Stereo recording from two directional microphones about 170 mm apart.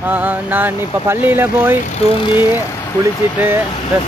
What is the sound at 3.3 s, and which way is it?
Speech, 10° right (ahead or behind).